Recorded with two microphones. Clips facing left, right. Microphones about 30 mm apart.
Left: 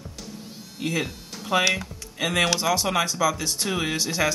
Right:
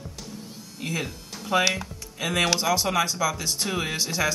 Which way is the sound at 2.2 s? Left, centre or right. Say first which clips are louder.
Left 1 dB; centre.